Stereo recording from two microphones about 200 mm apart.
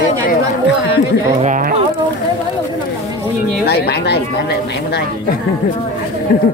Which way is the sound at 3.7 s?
55° left (ahead or behind).